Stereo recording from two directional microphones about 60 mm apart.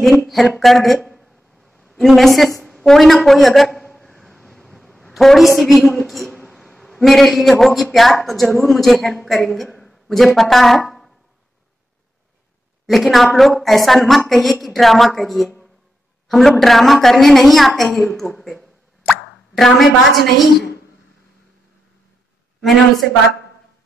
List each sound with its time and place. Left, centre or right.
0.6 s a woman's voice: centre
12.8 s a woman's voice: centre
22.6 s a woman's voice: centre